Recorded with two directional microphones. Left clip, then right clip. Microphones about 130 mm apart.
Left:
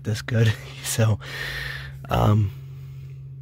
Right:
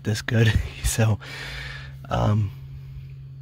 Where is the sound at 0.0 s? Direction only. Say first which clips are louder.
Right 2 dB; 15° right (ahead or behind).